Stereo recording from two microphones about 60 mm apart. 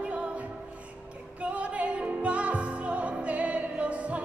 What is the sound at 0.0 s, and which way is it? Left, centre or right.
Music, right.